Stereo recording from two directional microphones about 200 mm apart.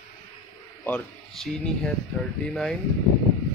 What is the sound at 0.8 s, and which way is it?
Speech, 5° left (ahead or behind).